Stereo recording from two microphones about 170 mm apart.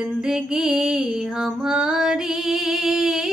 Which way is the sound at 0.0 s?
5° right (ahead or behind).